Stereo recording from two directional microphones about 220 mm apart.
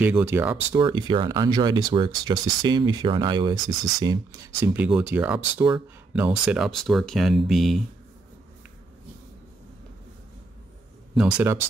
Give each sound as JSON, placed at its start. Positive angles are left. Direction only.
{"t": 0.0, "sound": "speech", "side_deg": -10}
{"t": 0.8, "sound": "speech", "side_deg": -20}
{"t": 11.1, "sound": "speech", "side_deg": -5}